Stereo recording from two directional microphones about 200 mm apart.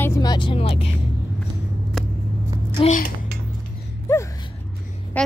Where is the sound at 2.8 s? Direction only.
40° left (ahead or behind).